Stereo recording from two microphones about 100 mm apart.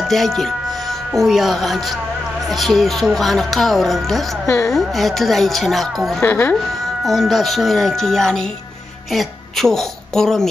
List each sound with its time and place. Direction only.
0.1 s speech: 5° left (ahead or behind)
6.2 s speech: 20° left (ahead or behind)
7.1 s a woman's voice: centre (ahead or behind)